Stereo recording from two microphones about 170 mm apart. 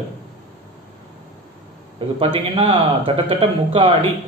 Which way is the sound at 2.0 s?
30° right (ahead or behind).